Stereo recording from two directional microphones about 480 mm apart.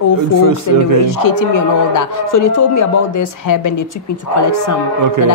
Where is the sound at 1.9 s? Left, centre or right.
Left.